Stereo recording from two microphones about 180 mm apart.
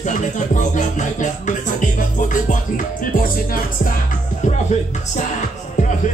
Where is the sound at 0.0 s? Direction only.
40° left (ahead or behind).